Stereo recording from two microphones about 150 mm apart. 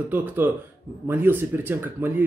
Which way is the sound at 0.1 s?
10° right (ahead or behind).